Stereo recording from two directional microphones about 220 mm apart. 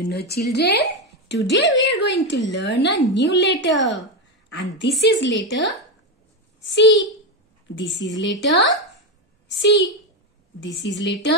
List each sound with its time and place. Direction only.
0.1 s a woman's voice: 45° left (ahead or behind)